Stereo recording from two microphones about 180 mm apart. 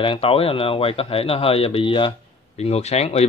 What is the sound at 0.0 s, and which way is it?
Speech, 30° left (ahead or behind).